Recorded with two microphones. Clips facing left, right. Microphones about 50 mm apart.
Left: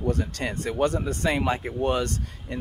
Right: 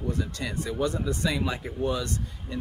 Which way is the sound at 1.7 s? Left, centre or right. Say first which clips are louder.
Left 4 dB; left.